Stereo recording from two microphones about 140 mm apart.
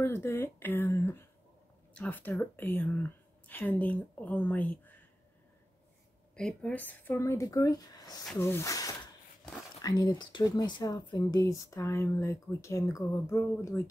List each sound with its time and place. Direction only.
0.0 s speech: 15° left (ahead or behind)
6.3 s speech: 5° left (ahead or behind)